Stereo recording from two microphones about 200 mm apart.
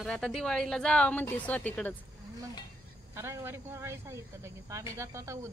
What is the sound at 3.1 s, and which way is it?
Speech, 15° right (ahead or behind).